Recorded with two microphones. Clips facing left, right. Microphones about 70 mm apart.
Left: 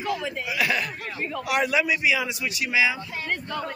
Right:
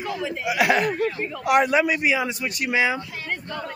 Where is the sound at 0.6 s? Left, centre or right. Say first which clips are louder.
Right 7 dB; right.